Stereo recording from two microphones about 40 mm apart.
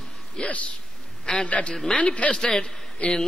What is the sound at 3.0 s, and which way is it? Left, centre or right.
Speech, left.